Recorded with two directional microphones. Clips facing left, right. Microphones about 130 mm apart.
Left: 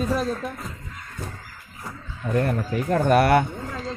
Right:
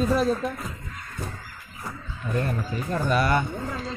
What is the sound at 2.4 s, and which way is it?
Speech, 65° left (ahead or behind).